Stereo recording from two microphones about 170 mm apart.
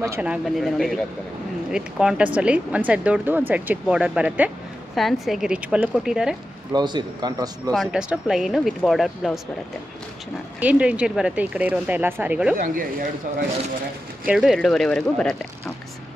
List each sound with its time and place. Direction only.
0.0 s speech: 10° right (ahead or behind)
6.7 s a man's voice: 25° right (ahead or behind)
7.7 s speech: 5° right (ahead or behind)
10.6 s speech: 10° right (ahead or behind)
14.2 s speech: 5° right (ahead or behind)